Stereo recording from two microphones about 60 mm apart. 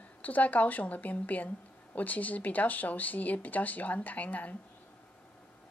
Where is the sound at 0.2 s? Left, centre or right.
Left.